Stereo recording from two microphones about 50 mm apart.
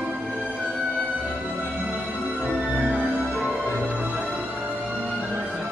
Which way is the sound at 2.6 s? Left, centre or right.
Right.